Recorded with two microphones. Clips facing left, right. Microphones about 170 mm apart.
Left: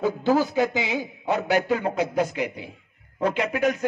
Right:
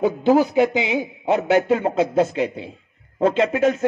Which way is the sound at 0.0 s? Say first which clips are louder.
Right 5 dB; 20° right (ahead or behind).